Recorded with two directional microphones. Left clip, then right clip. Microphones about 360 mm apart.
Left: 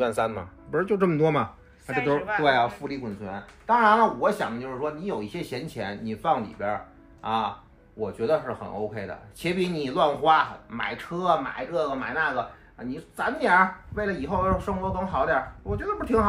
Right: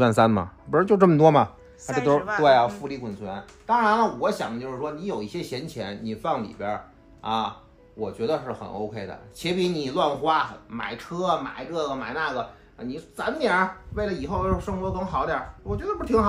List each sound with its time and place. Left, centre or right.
0.3 s speech: right; by 16.3 s centre